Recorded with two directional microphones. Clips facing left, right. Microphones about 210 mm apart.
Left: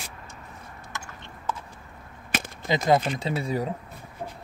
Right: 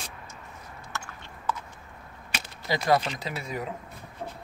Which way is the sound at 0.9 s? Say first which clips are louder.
Right 1 dB; 20° left (ahead or behind).